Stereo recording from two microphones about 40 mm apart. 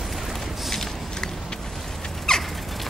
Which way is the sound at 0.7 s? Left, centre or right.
Centre.